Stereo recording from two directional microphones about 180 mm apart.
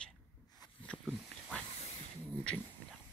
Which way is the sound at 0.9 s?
5° right (ahead or behind).